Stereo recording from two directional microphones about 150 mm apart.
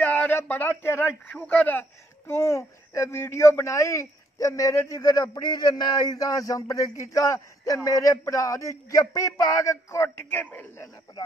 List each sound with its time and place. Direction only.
0.0 s speech: 10° left (ahead or behind)